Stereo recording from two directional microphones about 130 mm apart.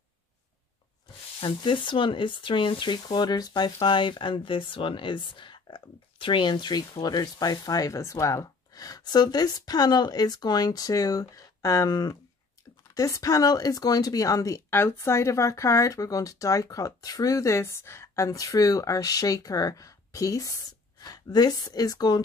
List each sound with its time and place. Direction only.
1.4 s speech: 40° left (ahead or behind)